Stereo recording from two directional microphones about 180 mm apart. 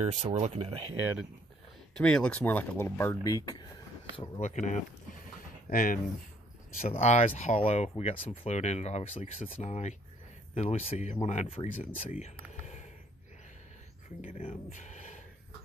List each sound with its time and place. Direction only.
0.0 s speech: 40° right (ahead or behind)
2.0 s speech: 5° left (ahead or behind)
4.4 s speech: 40° left (ahead or behind)
6.8 s speech: 35° left (ahead or behind)
12.1 s a sound: 40° left (ahead or behind)
14.2 s speech: 45° left (ahead or behind)
14.7 s a sound: 40° left (ahead or behind)